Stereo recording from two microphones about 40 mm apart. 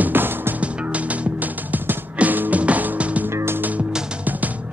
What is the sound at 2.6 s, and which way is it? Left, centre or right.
Music, right.